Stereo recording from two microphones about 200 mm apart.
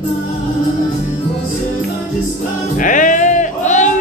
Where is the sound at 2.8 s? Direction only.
40° left (ahead or behind).